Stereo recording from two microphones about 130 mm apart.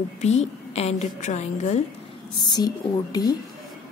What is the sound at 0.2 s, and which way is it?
A woman's voice, 60° left (ahead or behind).